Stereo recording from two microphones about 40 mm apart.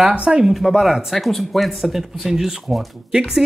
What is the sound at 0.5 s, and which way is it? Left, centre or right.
Speech, centre.